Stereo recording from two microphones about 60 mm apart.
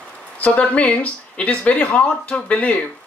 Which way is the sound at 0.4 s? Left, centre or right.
Left.